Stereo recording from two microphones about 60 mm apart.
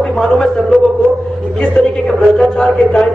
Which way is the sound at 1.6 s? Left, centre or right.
Centre.